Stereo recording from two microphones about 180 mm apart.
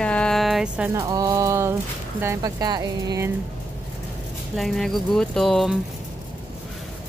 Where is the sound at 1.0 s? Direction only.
20° right (ahead or behind).